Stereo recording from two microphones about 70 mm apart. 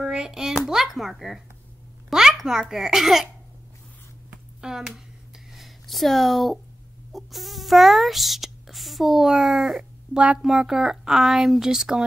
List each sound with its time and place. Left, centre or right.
0.0 s a child's voice: centre
2.0 s a sound: centre
2.7 s speech: centre
4.6 s speech: centre
10.1 s a child's voice: centre